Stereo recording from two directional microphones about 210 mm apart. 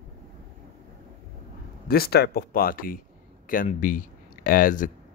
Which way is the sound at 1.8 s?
45° left (ahead or behind).